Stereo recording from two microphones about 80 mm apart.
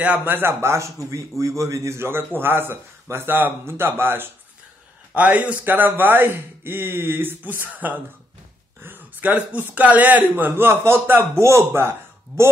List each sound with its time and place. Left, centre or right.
0.0 s a man's voice: right